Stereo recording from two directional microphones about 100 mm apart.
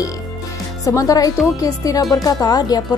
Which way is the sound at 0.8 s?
35° left (ahead or behind).